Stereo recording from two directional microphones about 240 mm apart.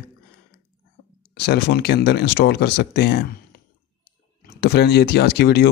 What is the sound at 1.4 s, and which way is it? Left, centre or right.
Speech, left.